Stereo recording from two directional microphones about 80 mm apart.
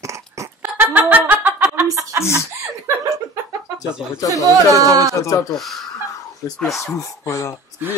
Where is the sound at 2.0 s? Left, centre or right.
Right.